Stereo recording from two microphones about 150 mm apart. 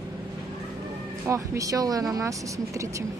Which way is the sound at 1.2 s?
20° right (ahead or behind).